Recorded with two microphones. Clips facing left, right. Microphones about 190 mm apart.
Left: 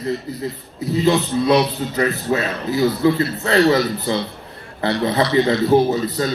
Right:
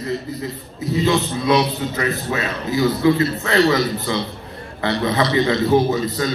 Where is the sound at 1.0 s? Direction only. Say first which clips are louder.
Left 3 dB; 35° left (ahead or behind).